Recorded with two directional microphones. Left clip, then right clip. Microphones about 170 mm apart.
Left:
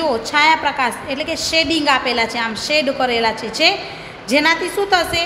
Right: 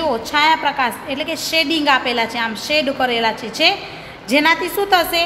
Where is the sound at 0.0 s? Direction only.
Centre (ahead or behind).